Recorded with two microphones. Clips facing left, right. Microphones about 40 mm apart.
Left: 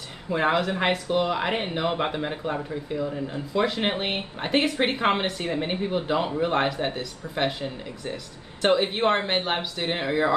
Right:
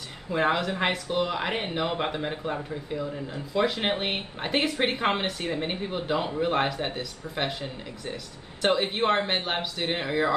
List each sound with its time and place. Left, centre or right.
0.3 s speech: centre
8.6 s speech: centre